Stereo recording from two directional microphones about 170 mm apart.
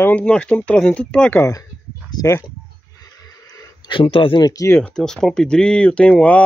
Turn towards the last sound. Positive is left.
turn(degrees=5)  # may be behind; listen again after turning